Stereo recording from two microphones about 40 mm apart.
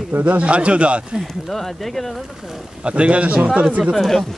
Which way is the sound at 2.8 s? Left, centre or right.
Right.